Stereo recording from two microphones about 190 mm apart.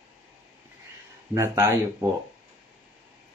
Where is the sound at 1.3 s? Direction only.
15° right (ahead or behind).